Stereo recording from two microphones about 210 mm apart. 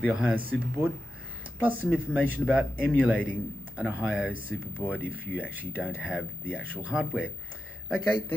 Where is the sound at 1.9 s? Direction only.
10° left (ahead or behind).